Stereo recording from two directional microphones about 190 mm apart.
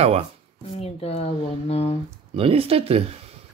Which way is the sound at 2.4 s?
30° right (ahead or behind).